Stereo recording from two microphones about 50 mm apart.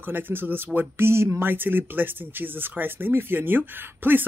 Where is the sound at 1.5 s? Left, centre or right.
Right.